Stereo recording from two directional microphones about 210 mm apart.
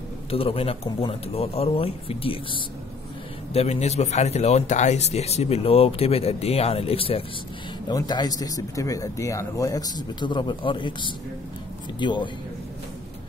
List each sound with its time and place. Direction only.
0.3 s speech: 25° left (ahead or behind)